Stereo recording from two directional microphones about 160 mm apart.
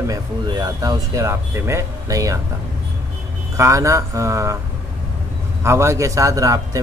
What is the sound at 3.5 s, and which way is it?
Speech, 20° right (ahead or behind).